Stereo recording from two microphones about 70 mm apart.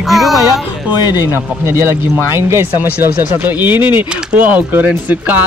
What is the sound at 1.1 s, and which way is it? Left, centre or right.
Speech, right.